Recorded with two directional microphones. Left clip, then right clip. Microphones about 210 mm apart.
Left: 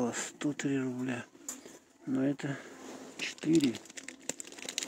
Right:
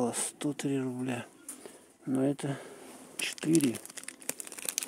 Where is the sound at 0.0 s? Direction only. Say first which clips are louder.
Right 1 dB; 25° right (ahead or behind).